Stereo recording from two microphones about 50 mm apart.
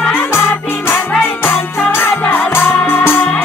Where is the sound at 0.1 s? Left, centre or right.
Left.